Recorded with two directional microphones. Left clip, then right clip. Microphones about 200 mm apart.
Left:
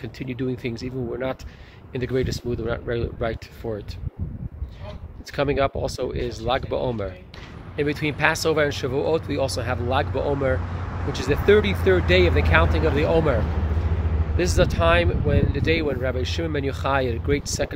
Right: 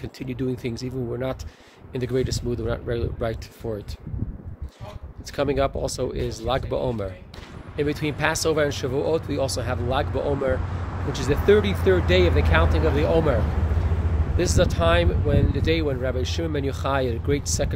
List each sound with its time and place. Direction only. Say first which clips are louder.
0.0 s speech: even; 5° right (ahead or behind)
5.3 s speech: left 1 dB; 5° right (ahead or behind)